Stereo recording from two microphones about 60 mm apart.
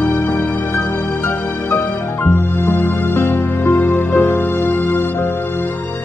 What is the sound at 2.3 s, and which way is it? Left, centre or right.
Music, left.